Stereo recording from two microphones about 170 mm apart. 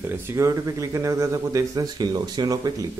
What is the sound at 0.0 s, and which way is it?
A man's voice, 15° right (ahead or behind).